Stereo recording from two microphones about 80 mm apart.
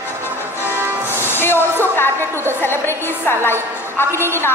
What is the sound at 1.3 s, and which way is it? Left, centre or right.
Hair dryer, left.